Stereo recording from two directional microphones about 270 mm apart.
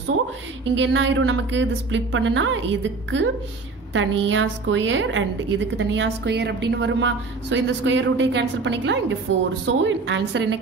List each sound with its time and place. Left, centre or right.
0.7 s a woman's voice: right